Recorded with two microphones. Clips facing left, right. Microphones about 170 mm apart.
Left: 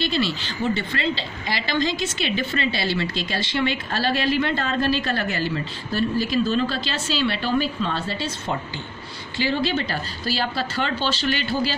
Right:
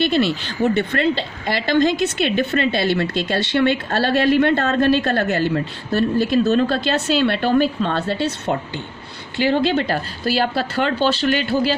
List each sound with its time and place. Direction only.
0.0 s a woman's voice: 55° right (ahead or behind)